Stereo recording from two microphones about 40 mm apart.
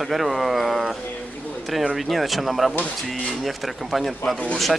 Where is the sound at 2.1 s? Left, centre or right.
Centre.